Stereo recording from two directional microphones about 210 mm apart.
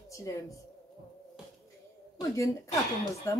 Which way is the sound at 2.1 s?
15° left (ahead or behind).